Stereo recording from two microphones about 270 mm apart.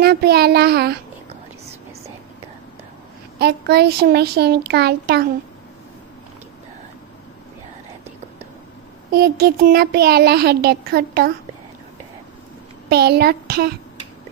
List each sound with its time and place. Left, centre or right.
0.0 s a child's voice: right
3.3 s a child's voice: right
9.1 s a child's voice: right
12.9 s a child's voice: right